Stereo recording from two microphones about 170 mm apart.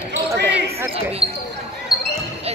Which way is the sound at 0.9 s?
35° right (ahead or behind).